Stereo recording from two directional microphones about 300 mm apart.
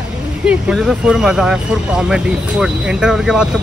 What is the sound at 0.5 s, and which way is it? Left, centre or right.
Speech, centre.